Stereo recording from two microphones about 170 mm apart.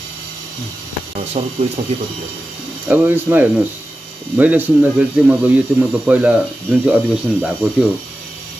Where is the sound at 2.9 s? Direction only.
10° right (ahead or behind).